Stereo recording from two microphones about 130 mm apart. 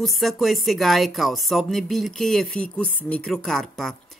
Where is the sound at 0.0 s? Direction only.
Centre (ahead or behind).